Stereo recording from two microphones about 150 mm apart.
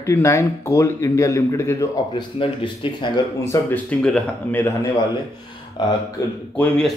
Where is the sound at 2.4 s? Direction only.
35° left (ahead or behind).